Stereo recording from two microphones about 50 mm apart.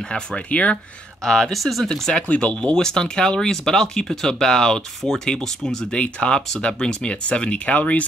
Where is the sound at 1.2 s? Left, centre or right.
Centre.